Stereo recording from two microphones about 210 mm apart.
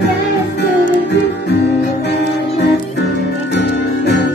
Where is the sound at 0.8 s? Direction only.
50° left (ahead or behind).